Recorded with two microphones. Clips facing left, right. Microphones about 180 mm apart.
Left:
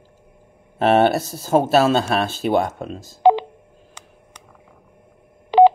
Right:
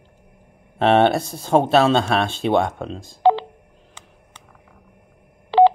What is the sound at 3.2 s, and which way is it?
Telephone dialing, 15° left (ahead or behind).